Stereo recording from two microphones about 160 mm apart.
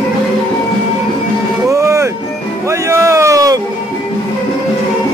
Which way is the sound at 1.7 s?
20° right (ahead or behind).